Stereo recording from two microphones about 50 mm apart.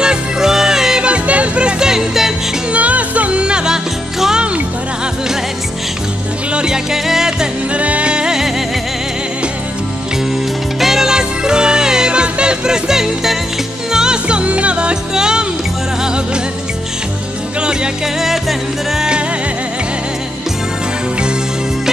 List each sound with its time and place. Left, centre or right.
0.0 s music: centre
1.0 s music: right
2.7 s music: right; by 4.5 s centre
6.5 s music: centre
7.7 s music: right
10.8 s music: centre
18.0 s music: centre